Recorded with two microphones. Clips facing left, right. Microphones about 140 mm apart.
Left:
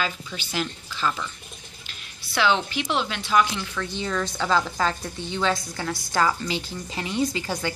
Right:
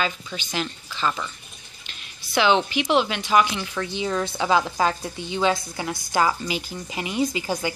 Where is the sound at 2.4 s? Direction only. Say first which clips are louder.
Right 3 dB; 20° right (ahead or behind).